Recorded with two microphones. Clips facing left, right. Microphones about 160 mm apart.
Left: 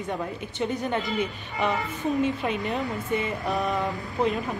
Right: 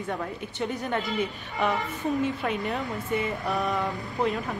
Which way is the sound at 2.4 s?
20° left (ahead or behind).